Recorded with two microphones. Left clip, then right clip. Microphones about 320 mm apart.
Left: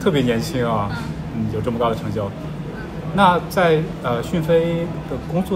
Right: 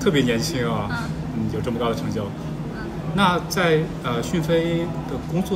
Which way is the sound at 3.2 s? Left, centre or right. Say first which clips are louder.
Left 5 dB; centre.